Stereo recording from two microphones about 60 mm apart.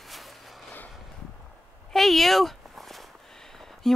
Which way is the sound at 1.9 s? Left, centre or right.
Centre.